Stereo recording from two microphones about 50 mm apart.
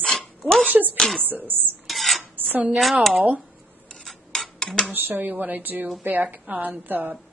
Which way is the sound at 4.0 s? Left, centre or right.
Centre.